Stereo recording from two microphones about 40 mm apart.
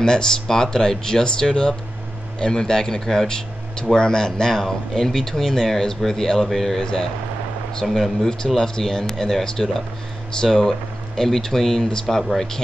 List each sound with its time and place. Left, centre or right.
0.0 s speech: centre
8.5 s speech: centre